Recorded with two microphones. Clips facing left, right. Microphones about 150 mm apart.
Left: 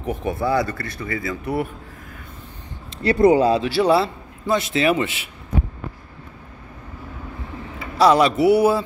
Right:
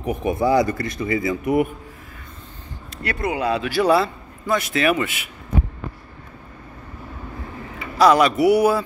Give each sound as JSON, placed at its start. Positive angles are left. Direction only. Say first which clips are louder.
{"t": 0.0, "sound": "speech", "louder": "right 3 dB", "side_deg": -15}
{"t": 2.9, "sound": "a man's voice", "louder": "left 11 dB", "side_deg": 30}
{"t": 8.0, "sound": "a man's voice", "louder": "even", "side_deg": 30}